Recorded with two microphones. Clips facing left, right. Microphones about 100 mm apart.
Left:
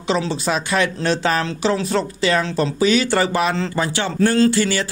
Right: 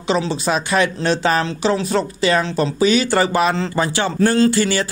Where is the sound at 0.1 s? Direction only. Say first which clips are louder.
Right 1 dB; 25° right (ahead or behind).